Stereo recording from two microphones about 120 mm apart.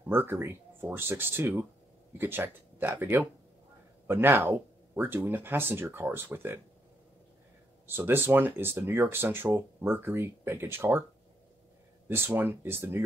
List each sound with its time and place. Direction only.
0.1 s speech: 20° right (ahead or behind)
7.8 s speech: 20° right (ahead or behind)
12.1 s speech: 15° right (ahead or behind)